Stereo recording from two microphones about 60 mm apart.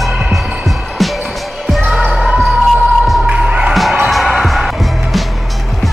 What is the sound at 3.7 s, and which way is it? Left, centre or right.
Music, centre.